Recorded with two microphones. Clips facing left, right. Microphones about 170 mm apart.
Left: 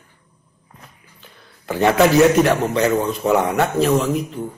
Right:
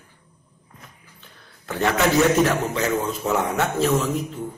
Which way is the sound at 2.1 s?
Centre (ahead or behind).